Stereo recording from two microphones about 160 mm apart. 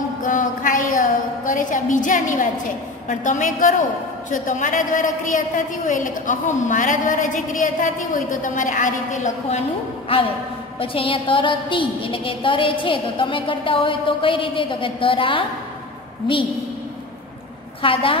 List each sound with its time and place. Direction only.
0.2 s a sound: 55° left (ahead or behind)
3.1 s a woman's voice: 50° left (ahead or behind)
10.1 s a woman's voice: 35° left (ahead or behind)
17.8 s a woman's voice: 35° left (ahead or behind)